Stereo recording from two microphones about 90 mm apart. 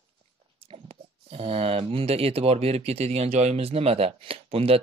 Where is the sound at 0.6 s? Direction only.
90° right.